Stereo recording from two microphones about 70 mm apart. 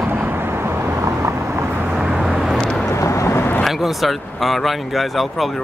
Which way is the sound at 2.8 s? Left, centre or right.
Left.